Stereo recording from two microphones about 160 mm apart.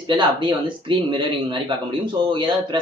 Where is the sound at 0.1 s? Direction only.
30° right (ahead or behind).